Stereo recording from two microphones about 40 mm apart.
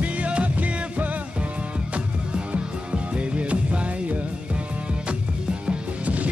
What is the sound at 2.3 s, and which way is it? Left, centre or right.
Music, right.